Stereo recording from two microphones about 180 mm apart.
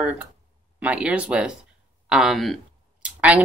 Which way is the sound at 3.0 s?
5° right (ahead or behind).